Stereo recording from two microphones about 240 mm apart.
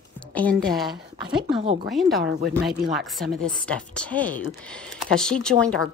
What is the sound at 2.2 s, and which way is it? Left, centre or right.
Speech, right.